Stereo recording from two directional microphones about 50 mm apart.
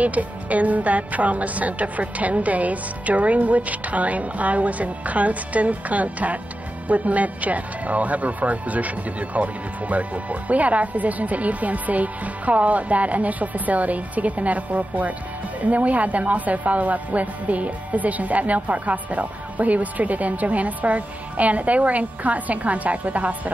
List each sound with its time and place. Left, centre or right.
0.0 s a woman's voice: right